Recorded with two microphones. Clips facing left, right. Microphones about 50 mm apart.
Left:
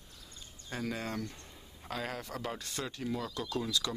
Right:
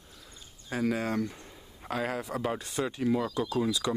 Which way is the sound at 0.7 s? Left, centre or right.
Centre.